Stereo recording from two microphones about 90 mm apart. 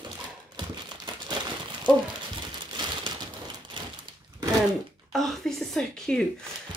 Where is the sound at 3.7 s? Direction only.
70° right (ahead or behind).